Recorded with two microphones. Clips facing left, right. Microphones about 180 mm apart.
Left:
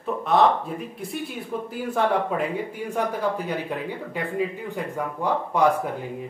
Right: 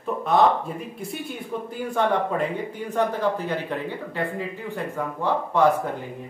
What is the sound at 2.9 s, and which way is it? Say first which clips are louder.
Speech: right 2 dB; 10° left (ahead or behind).